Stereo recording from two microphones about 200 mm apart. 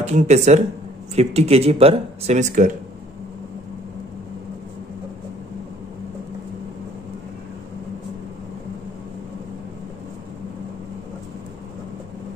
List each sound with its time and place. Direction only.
0.0 s speech: 35° right (ahead or behind)